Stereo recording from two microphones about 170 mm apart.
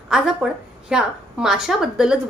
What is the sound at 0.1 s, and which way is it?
A woman's voice, 5° right (ahead or behind).